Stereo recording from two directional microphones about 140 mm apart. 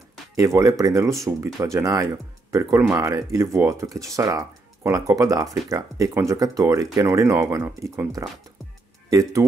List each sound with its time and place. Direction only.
0.4 s speech: 20° right (ahead or behind)